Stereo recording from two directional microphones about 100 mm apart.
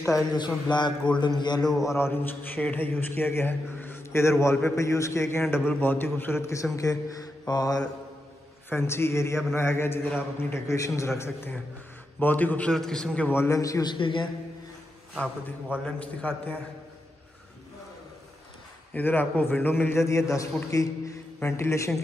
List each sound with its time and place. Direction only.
0.0 s a man's voice: 35° left (ahead or behind)
0.4 s a man's voice: 45° left (ahead or behind)
1.9 s a man's voice: 25° left (ahead or behind); by 7.8 s 40° left (ahead or behind)
8.6 s a man's voice: 25° left (ahead or behind)
10.7 s a man's voice: 30° left (ahead or behind); by 13.3 s 10° left (ahead or behind)
13.3 s a man's voice: 25° left (ahead or behind)
13.8 s a woman's voice: 55° left (ahead or behind)
15.8 s a man's voice: 10° left (ahead or behind)
18.9 s a man's voice: 20° left (ahead or behind)